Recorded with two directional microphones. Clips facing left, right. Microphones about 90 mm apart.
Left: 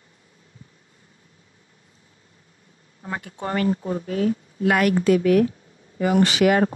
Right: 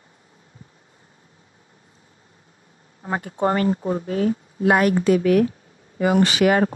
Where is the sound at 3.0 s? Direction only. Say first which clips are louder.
Right 7 dB; 35° right (ahead or behind).